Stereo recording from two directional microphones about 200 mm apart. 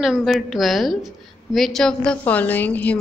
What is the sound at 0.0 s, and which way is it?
A woman's voice, centre (ahead or behind).